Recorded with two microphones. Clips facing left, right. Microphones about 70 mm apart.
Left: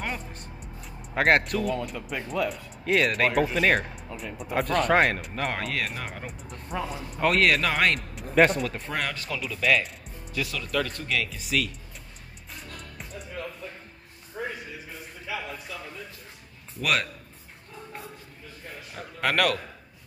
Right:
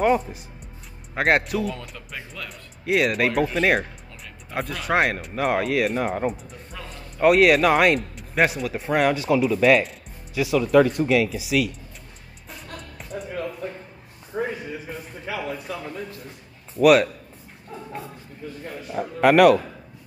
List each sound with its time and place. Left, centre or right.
0.0 s speech: centre
2.8 s speech: centre
6.7 s speech: centre
7.2 s speech: centre
11.4 s speech: centre
16.8 s speech: centre
18.9 s a sound: centre